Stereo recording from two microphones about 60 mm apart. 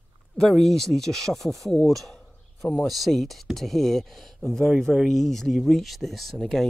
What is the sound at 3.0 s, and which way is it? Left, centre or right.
Speech, centre.